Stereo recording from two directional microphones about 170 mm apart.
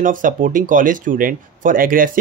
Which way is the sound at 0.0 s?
50° right (ahead or behind).